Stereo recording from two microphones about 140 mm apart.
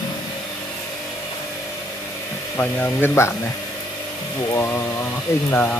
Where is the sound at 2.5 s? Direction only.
15° left (ahead or behind).